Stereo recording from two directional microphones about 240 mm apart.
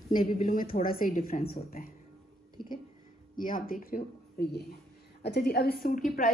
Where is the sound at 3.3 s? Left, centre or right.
Left.